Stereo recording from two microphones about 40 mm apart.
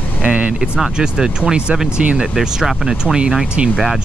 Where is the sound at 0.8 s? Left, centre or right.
Centre.